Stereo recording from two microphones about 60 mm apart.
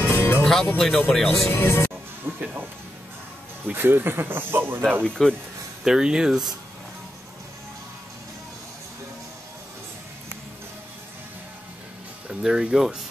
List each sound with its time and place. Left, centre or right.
0.0 s music: left
0.4 s music: centre
0.7 s speech: centre
1.5 s speech: left
2.3 s a sound: right
3.7 s speech: right
5.0 s speech: centre
5.9 s speech: centre
12.3 s speech: centre